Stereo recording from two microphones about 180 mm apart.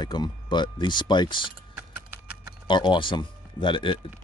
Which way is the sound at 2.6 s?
25° left (ahead or behind).